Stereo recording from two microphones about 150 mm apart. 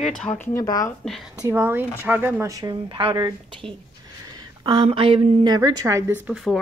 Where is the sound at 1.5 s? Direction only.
15° right (ahead or behind).